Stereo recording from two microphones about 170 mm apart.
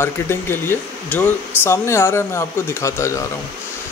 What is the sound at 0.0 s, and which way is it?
Speech, 15° left (ahead or behind).